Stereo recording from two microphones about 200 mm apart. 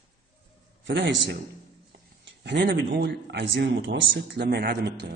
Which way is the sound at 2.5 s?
60° right (ahead or behind).